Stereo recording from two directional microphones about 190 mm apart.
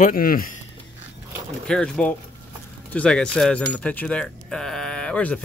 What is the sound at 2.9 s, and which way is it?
Speech, 5° left (ahead or behind).